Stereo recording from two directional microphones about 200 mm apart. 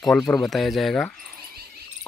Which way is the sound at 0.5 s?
Centre (ahead or behind).